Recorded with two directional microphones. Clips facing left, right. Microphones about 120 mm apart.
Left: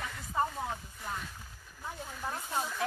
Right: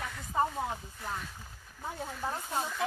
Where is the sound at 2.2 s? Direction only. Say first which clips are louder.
Right 1 dB; 15° right (ahead or behind).